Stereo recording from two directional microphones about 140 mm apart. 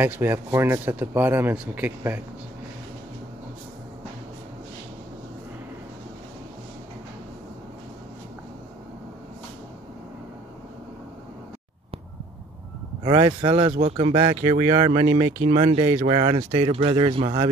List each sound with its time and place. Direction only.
0.0 s speech: 15° right (ahead or behind)
13.0 s speech: 35° right (ahead or behind)
15.5 s speech: 40° right (ahead or behind)